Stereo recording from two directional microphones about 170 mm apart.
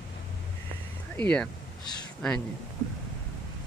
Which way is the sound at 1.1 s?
5° left (ahead or behind).